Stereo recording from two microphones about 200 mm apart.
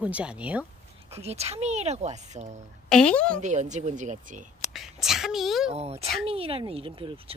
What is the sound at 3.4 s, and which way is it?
Speech, 35° right (ahead or behind).